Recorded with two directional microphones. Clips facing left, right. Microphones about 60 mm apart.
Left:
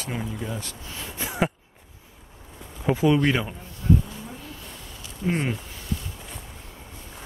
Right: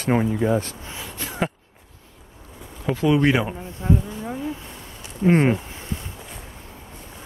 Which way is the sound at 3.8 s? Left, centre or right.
Right.